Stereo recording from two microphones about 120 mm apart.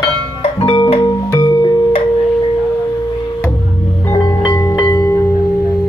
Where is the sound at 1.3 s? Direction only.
35° left (ahead or behind).